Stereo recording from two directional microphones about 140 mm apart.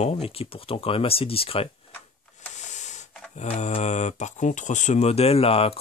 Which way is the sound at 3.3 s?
55° left (ahead or behind).